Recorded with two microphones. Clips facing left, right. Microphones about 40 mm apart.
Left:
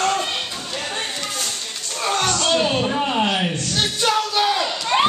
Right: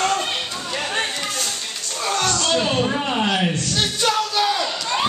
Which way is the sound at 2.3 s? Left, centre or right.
Centre.